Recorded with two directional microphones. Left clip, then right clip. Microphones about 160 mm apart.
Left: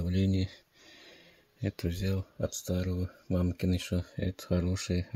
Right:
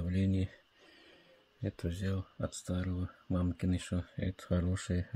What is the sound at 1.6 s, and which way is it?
Speech, 20° left (ahead or behind).